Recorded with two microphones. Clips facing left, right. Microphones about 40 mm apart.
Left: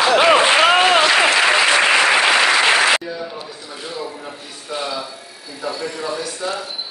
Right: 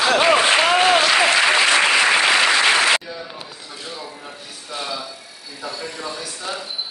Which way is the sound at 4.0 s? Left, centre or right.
Centre.